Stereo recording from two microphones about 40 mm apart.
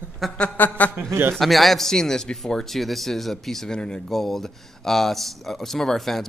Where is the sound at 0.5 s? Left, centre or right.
Left.